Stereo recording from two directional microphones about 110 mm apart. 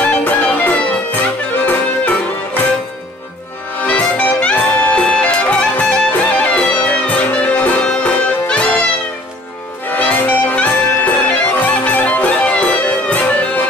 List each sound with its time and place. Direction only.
0.0 s music: 15° left (ahead or behind)
3.8 s music: 10° left (ahead or behind)
9.8 s music: 15° left (ahead or behind)